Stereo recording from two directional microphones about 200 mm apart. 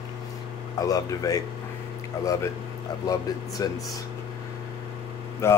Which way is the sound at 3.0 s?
20° left (ahead or behind).